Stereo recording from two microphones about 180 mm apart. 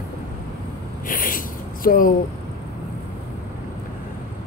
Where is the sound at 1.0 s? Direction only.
50° left (ahead or behind).